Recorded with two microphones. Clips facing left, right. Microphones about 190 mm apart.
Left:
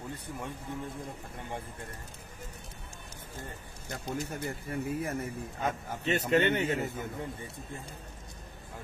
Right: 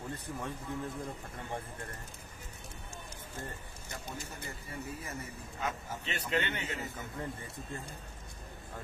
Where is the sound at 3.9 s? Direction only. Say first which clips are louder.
Left 8 dB; 55° left (ahead or behind).